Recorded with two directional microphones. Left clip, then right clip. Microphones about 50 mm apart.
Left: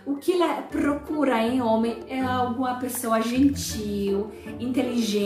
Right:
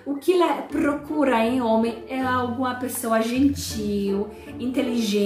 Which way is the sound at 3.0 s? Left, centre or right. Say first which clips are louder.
Right 2 dB; centre.